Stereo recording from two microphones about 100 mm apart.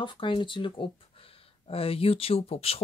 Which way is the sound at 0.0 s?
55° left (ahead or behind).